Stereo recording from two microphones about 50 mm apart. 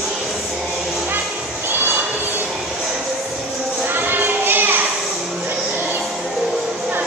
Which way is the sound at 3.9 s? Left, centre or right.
Right.